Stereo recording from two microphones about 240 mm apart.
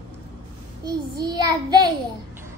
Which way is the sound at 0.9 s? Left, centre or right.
Centre.